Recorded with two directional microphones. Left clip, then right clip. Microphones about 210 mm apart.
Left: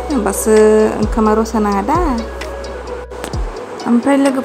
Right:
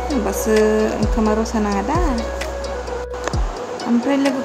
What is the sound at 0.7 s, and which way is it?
Speech, centre (ahead or behind).